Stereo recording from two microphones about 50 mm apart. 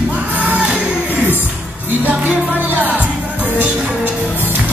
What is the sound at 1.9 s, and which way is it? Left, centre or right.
Music, right.